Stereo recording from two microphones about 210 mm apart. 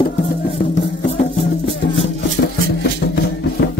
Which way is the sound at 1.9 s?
50° left (ahead or behind).